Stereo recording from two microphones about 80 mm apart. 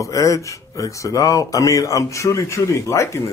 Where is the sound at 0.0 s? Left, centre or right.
Left.